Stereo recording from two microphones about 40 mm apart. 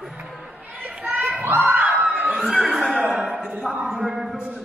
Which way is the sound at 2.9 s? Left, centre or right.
Right.